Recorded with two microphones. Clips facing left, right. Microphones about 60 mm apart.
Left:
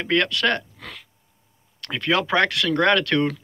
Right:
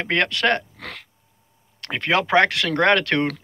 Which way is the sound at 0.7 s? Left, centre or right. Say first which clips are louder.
Right 3 dB; right.